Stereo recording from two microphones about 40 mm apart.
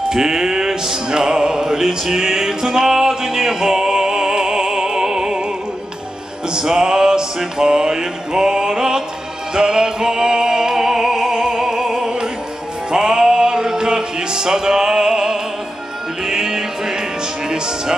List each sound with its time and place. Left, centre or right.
0.1 s music: centre
6.5 s music: centre
17.5 s speech: centre